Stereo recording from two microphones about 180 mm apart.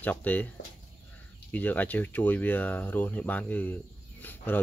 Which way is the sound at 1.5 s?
10° left (ahead or behind).